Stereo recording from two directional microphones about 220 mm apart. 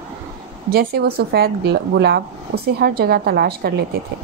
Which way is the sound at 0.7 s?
45° right (ahead or behind).